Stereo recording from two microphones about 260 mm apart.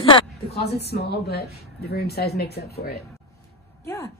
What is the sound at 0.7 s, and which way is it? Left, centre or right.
A woman's voice, left.